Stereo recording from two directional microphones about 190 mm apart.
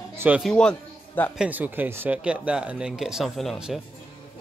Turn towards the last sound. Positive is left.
turn(degrees=0)  # may be behind; listen again after turning